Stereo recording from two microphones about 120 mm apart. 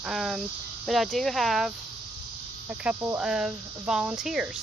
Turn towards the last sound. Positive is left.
turn(degrees=-5)  # may be behind; listen again after turning